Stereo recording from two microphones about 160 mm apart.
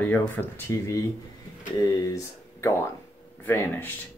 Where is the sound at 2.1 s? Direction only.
20° left (ahead or behind).